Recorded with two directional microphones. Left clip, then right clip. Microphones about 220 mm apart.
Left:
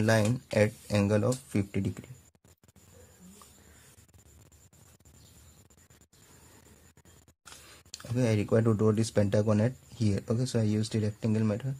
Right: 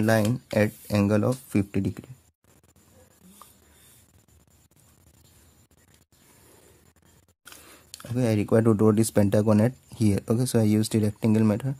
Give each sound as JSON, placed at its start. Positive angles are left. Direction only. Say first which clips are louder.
{"t": 0.0, "sound": "speech", "louder": "right 4 dB", "side_deg": -20}
{"t": 7.4, "sound": "speech", "louder": "right 3 dB", "side_deg": -20}